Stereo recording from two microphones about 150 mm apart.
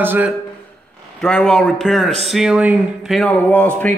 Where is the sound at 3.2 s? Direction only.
10° left (ahead or behind).